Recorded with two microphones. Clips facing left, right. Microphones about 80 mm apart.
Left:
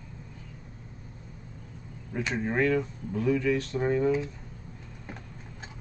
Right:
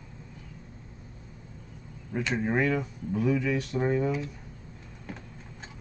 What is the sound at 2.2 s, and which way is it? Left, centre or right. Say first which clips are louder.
Speech: right 1 dB; centre.